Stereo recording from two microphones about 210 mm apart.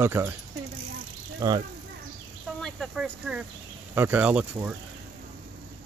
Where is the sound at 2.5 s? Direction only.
Centre (ahead or behind).